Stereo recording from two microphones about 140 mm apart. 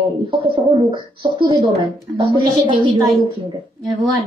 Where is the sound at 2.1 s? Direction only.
35° right (ahead or behind).